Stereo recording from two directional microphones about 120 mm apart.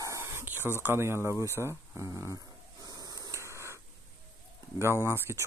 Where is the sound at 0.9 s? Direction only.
20° right (ahead or behind).